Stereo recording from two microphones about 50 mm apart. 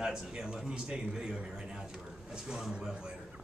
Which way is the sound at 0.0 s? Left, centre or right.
Centre.